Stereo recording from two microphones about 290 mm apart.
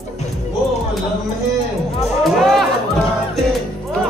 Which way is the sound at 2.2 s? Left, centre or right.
Centre.